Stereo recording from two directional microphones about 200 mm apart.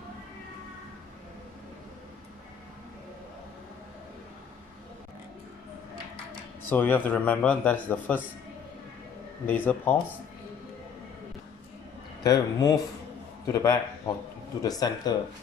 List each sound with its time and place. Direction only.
6.7 s speech: 10° left (ahead or behind)
9.5 s speech: 10° left (ahead or behind)
12.2 s speech: 20° left (ahead or behind)